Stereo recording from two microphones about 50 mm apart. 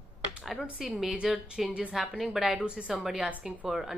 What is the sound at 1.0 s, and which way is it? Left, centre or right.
Speech, centre.